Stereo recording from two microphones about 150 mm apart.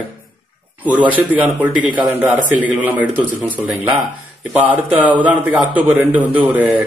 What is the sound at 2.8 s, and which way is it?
A man's voice, 10° right (ahead or behind).